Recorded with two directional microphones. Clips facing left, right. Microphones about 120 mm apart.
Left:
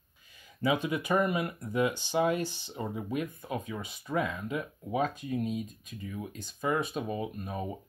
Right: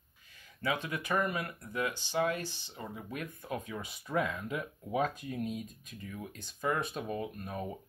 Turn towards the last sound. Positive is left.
turn(degrees=5)  # may be behind; listen again after turning